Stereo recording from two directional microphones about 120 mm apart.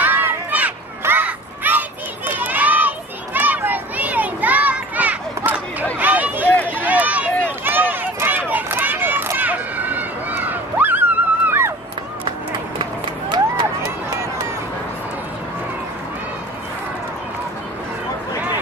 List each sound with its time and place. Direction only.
0.0 s a sound: 15° right (ahead or behind)
3.3 s children playing: 15° right (ahead or behind)
5.9 s run: 15° right (ahead or behind)